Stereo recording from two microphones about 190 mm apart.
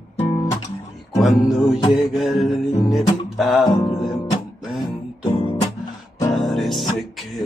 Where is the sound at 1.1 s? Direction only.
Centre (ahead or behind).